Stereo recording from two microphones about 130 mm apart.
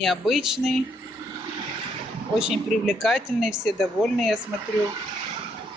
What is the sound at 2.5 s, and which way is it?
Speech, centre (ahead or behind).